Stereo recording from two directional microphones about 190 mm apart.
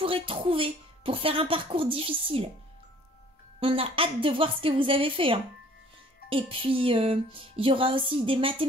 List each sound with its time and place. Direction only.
0.0 s speech: 30° right (ahead or behind)
3.5 s speech: 30° right (ahead or behind)